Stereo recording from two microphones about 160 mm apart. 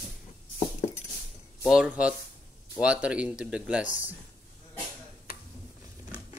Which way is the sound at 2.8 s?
5° right (ahead or behind).